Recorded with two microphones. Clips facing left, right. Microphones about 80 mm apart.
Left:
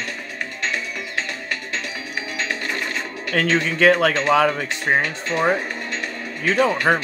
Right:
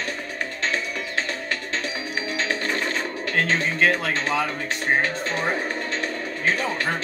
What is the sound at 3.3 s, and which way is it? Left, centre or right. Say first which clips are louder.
Speech: left 3 dB; left.